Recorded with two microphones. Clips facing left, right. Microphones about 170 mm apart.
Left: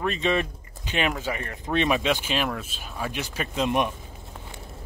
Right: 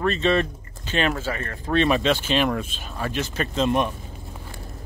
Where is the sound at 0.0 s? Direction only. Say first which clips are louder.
Right 4 dB; 10° left (ahead or behind).